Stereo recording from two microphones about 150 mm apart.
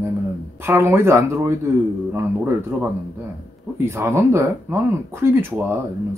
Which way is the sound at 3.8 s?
15° right (ahead or behind).